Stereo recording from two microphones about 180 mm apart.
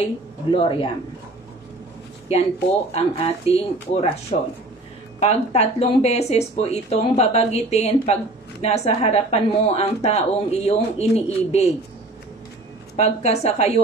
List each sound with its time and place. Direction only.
0.5 s speech: 30° left (ahead or behind)
2.2 s speech: 35° left (ahead or behind)
12.9 s speech: 35° left (ahead or behind)